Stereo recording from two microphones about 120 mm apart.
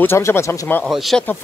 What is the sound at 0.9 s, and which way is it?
Speech, centre (ahead or behind).